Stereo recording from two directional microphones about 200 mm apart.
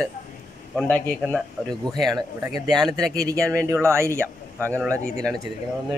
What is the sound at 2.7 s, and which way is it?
Speech, 20° right (ahead or behind).